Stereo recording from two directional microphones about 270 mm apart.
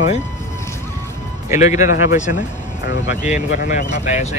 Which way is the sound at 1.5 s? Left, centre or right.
Left.